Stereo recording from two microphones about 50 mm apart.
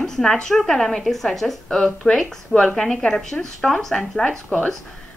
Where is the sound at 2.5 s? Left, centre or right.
Left.